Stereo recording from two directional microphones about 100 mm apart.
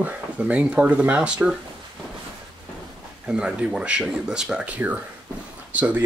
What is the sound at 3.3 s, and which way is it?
Speech, 10° right (ahead or behind).